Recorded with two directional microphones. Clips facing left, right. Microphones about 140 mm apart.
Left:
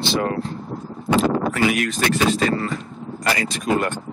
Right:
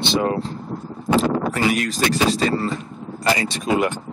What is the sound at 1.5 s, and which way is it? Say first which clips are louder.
Speech: even; 35° right (ahead or behind).